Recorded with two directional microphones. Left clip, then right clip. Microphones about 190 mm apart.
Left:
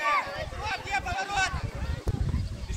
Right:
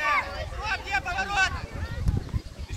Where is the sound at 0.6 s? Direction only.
65° left (ahead or behind).